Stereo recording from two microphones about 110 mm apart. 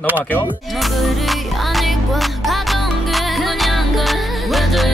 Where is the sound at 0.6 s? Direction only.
Centre (ahead or behind).